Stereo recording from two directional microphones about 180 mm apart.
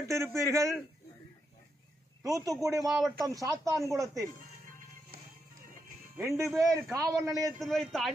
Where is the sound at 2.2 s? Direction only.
20° right (ahead or behind).